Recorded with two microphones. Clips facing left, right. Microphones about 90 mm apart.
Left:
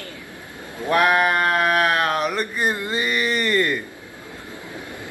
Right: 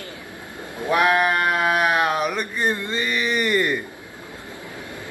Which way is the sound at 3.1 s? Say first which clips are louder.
Right 1 dB; centre (ahead or behind).